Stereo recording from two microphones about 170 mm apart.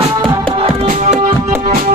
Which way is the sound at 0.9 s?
50° right (ahead or behind).